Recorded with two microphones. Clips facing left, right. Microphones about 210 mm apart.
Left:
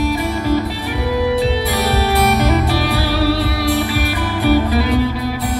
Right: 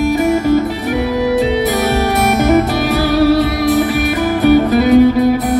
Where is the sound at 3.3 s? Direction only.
45° right (ahead or behind).